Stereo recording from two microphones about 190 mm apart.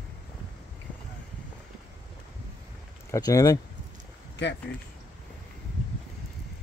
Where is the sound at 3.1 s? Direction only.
15° left (ahead or behind).